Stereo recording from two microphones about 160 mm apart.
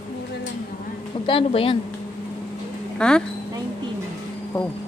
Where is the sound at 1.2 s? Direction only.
35° left (ahead or behind).